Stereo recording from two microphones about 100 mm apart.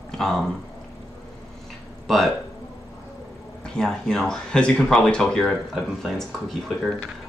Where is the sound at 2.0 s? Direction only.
Centre (ahead or behind).